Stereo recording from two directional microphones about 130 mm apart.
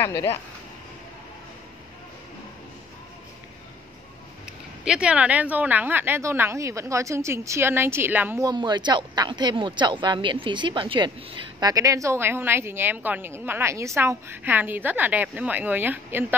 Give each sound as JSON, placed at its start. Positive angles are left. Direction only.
{"t": 0.0, "sound": "speech", "side_deg": 15}
{"t": 4.8, "sound": "a woman's voice", "side_deg": -5}
{"t": 8.5, "sound": "speech", "side_deg": -35}